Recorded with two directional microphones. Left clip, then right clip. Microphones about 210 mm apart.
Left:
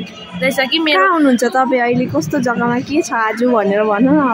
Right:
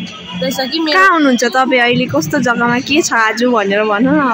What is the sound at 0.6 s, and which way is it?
A woman's voice, 5° left (ahead or behind).